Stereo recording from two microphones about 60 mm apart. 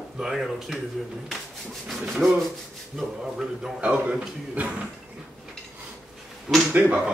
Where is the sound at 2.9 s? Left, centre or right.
Centre.